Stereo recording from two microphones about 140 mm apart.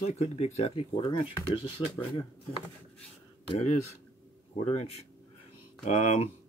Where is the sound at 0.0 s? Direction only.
50° left (ahead or behind).